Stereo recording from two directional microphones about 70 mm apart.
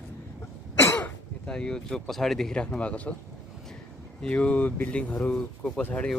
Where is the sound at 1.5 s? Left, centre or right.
Centre.